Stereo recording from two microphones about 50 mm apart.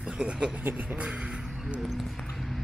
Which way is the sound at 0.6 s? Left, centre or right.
Right.